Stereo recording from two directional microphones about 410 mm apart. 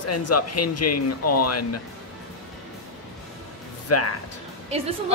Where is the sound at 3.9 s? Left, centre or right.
Left.